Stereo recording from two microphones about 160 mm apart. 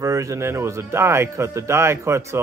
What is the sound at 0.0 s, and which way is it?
Speech, 20° right (ahead or behind).